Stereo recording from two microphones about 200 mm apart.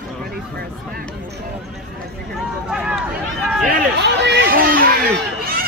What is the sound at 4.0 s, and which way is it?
Chatter, 55° right (ahead or behind).